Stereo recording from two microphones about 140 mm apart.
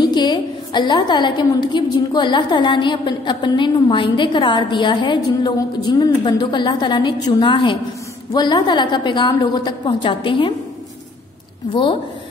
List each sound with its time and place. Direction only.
0.0 s a woman's voice: 30° left (ahead or behind)
11.7 s a woman's voice: 35° left (ahead or behind)